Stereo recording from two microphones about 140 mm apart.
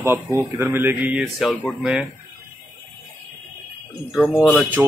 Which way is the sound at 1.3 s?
Centre (ahead or behind).